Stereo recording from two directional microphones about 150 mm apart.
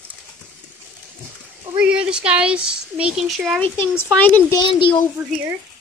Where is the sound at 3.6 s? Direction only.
15° left (ahead or behind).